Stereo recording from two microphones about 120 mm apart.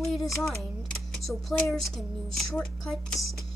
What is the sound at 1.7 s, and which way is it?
Speech, centre (ahead or behind).